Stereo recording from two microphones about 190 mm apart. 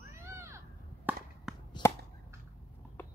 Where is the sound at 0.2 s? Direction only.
15° right (ahead or behind).